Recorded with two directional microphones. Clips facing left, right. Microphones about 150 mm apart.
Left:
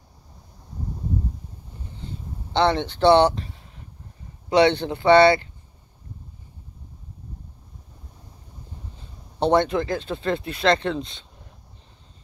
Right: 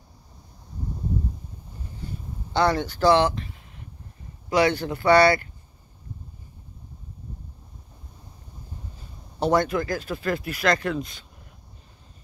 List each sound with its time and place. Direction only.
2.5 s speech: 25° left (ahead or behind)
9.4 s speech: 25° left (ahead or behind)